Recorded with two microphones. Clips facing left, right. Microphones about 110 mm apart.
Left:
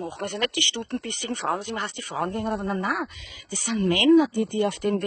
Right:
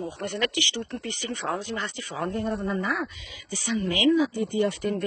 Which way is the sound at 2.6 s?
50° left (ahead or behind).